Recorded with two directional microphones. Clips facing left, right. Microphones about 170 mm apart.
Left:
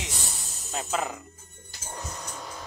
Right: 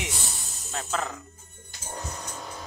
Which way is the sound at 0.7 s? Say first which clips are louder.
Left 1 dB; 10° left (ahead or behind).